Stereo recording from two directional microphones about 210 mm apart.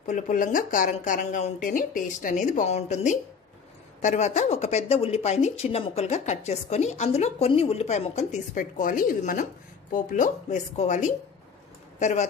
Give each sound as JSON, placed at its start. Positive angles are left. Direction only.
{"t": 0.0, "sound": "speech", "side_deg": 40}